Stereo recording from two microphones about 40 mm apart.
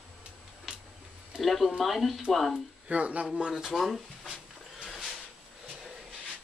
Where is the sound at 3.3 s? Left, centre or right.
Centre.